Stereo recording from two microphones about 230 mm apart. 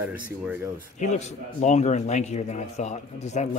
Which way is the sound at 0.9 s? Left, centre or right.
Left.